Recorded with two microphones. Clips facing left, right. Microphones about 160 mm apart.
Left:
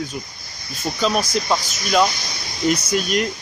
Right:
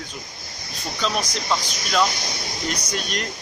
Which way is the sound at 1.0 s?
5° left (ahead or behind).